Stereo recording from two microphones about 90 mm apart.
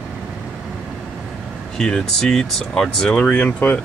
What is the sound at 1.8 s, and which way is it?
Speech, 5° left (ahead or behind).